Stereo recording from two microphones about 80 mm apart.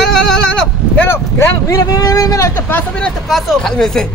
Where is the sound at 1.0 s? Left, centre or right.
Left.